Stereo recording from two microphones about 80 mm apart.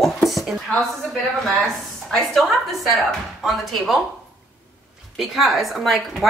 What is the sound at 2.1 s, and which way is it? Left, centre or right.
A woman's voice, centre.